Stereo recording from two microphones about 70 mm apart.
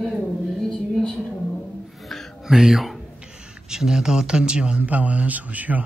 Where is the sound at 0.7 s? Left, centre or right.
Centre.